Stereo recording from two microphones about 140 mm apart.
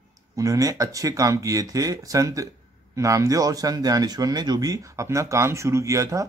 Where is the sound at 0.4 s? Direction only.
25° right (ahead or behind).